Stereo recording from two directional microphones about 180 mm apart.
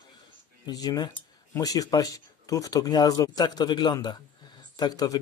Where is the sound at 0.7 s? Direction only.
20° left (ahead or behind).